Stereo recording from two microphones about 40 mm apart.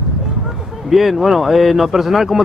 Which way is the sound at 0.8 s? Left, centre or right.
Centre.